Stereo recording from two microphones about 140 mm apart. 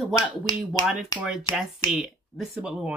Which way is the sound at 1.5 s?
45° left (ahead or behind).